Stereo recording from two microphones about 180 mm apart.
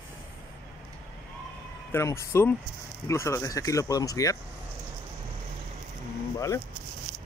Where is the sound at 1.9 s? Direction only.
15° left (ahead or behind).